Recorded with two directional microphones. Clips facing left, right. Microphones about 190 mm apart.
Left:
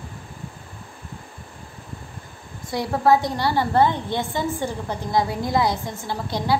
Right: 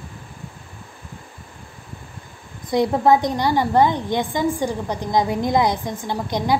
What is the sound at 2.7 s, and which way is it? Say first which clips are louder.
A woman's voice: right 3 dB; 20° right (ahead or behind).